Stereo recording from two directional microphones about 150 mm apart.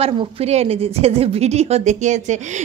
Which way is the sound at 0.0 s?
40° right (ahead or behind).